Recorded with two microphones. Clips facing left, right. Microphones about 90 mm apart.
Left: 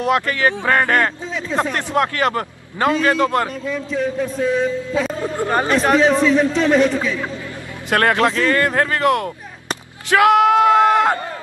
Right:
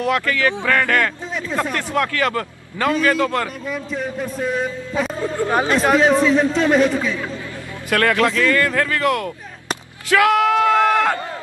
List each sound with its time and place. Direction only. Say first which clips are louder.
0.0 s a man's voice: left 1 dB; 25° left (ahead or behind)
3.6 s a man's voice: left 4 dB; 5° right (ahead or behind)
5.2 s a man's voice: even; 20° left (ahead or behind)
5.5 s a man's voice: left 1 dB; 5° right (ahead or behind)
7.9 s a man's voice: left 1 dB; 25° left (ahead or behind)
10.1 s a sound: left 3 dB; 25° left (ahead or behind)